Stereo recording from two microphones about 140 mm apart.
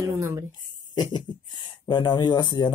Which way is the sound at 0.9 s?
30° left (ahead or behind).